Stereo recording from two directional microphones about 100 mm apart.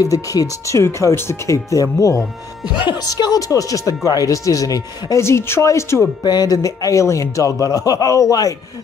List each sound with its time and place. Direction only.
0.0 s speech: 35° left (ahead or behind)
2.8 s speech: 45° left (ahead or behind); by 6.0 s 30° left (ahead or behind)
6.2 s speech: 40° left (ahead or behind)